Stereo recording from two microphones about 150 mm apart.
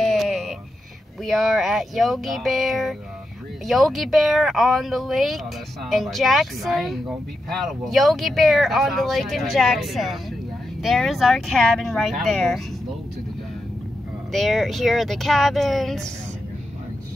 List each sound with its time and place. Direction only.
0.0 s a sound: centre (ahead or behind)
1.2 s speech: centre (ahead or behind)
14.3 s speech: centre (ahead or behind)